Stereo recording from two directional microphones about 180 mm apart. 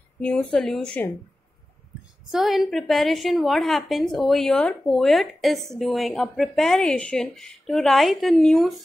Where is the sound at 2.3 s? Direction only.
Centre (ahead or behind).